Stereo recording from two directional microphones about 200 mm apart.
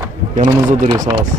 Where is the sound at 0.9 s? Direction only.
20° right (ahead or behind).